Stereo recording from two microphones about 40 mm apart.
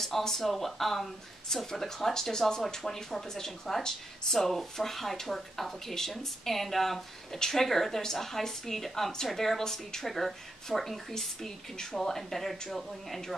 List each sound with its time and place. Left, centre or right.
0.0 s a woman's voice: centre